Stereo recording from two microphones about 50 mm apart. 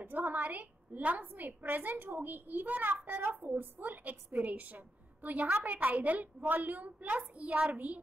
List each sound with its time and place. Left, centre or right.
0.0 s a woman's voice: right